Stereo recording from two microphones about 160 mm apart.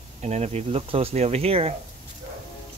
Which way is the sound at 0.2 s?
45° right (ahead or behind).